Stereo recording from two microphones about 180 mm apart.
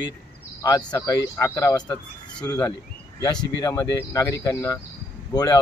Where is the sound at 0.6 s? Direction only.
20° left (ahead or behind).